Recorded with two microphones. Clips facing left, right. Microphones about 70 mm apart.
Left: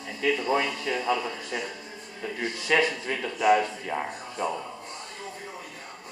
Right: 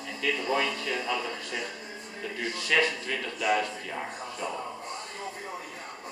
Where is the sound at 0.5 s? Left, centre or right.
Centre.